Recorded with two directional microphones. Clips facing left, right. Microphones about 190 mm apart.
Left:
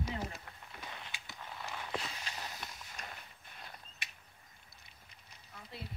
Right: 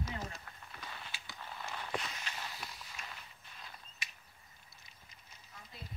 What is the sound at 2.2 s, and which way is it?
Walk, 40° left (ahead or behind).